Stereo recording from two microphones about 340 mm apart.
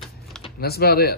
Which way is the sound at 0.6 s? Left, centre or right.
Left.